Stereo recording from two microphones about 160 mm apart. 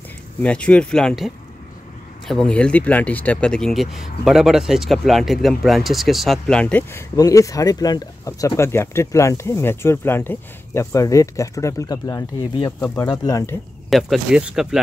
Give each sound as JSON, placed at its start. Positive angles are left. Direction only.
{"t": 0.4, "sound": "speech", "side_deg": 10}
{"t": 13.8, "sound": "speech", "side_deg": 0}